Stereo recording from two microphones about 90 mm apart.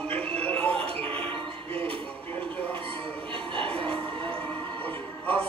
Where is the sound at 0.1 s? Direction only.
15° left (ahead or behind).